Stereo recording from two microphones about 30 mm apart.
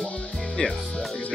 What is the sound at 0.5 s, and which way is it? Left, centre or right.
Speech, centre.